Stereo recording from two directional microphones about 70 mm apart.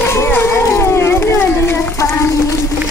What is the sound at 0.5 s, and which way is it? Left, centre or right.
Howl, left.